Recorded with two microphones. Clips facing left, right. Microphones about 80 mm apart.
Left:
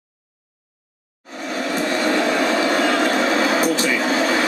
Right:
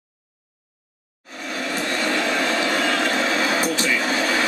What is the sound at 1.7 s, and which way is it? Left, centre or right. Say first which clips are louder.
Vehicle: left 4 dB; left.